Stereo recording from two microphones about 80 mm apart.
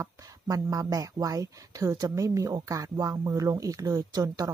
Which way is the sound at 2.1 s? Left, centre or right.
Right.